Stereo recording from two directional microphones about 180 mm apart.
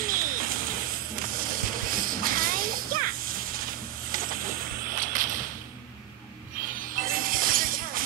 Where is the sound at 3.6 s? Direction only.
55° right (ahead or behind).